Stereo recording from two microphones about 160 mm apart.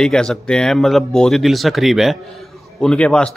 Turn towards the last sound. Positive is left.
turn(degrees=5)  # may be behind; listen again after turning